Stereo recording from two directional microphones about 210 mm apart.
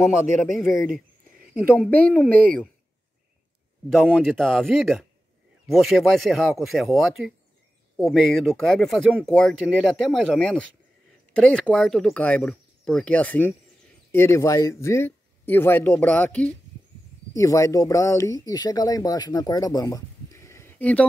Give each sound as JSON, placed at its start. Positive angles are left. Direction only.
{"t": 2.0, "sound": "speech", "side_deg": 5}
{"t": 3.9, "sound": "speech", "side_deg": 0}